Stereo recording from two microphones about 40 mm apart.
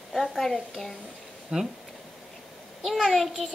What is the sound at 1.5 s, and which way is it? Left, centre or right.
Speech, right.